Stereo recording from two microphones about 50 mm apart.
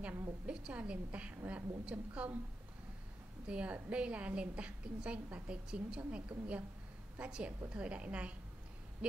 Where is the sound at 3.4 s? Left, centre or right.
Right.